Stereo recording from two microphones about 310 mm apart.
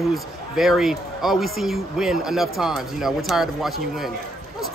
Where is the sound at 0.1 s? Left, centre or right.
Centre.